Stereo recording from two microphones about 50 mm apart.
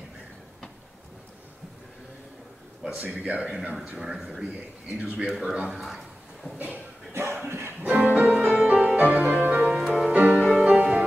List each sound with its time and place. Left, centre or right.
2.9 s speech: right
4.0 s speech: centre
5.2 s speech: centre
7.1 s a sound: right
7.4 s music: right
7.8 s music: right
8.4 s music: centre
8.8 s music: right
9.8 s music: centre
10.1 s music: right